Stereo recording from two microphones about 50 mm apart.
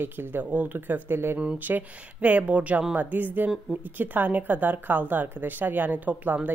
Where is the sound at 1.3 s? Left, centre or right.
Right.